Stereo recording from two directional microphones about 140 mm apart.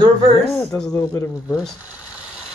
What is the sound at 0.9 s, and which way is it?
Speech, 25° left (ahead or behind).